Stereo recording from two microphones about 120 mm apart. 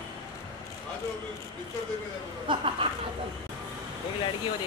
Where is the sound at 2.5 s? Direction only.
50° right (ahead or behind).